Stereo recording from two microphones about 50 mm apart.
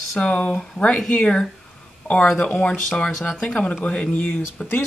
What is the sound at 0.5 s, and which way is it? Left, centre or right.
Speech, left.